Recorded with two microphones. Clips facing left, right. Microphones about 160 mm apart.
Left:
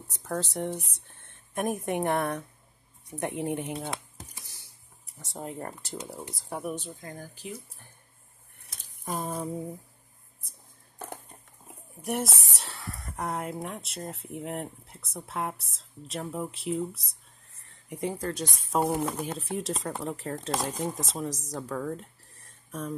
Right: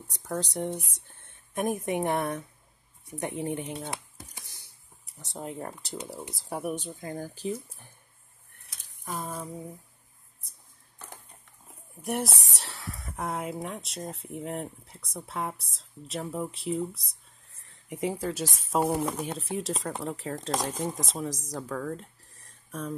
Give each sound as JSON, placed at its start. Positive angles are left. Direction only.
{"t": 0.1, "sound": "speech", "side_deg": 0}
{"t": 5.2, "sound": "speech", "side_deg": 0}
{"t": 6.5, "sound": "speech", "side_deg": -15}
{"t": 11.6, "sound": "speech", "side_deg": 0}